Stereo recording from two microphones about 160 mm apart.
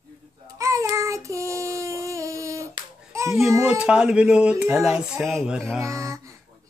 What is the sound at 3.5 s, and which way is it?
Speech, 15° right (ahead or behind).